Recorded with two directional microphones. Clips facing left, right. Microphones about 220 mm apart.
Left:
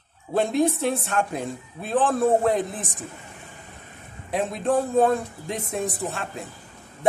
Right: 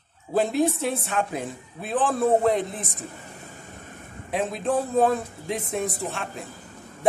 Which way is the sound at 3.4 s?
45° right (ahead or behind).